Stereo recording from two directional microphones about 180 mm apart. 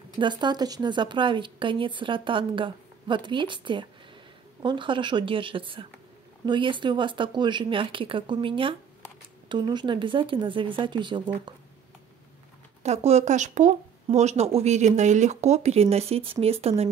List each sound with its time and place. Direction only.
0.1 s a woman's voice: 25° right (ahead or behind)
12.8 s speech: 40° right (ahead or behind)